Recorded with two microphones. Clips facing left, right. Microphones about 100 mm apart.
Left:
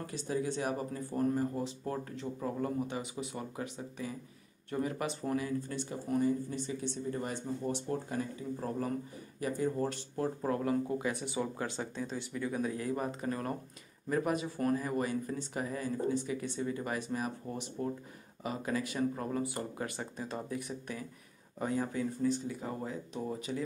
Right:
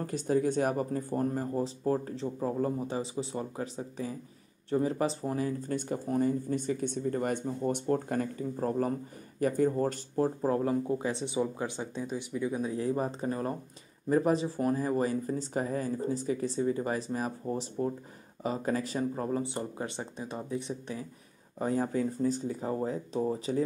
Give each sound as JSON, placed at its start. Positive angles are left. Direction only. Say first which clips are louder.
{"t": 0.0, "sound": "speech", "louder": "right 7 dB", "side_deg": -45}
{"t": 5.4, "sound": "speech", "louder": "right 4 dB", "side_deg": -45}
{"t": 8.5, "sound": "speech", "louder": "right 6 dB", "side_deg": -40}
{"t": 9.7, "sound": "speech", "louder": "right 4 dB", "side_deg": -35}